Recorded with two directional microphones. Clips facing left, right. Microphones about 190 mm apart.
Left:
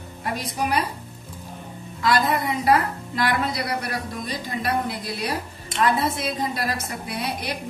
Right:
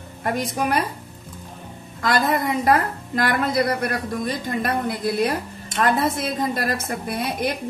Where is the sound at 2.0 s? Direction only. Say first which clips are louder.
Right 1 dB; 45° right (ahead or behind).